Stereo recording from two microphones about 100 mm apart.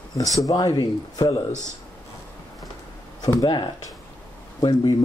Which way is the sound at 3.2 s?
40° left (ahead or behind).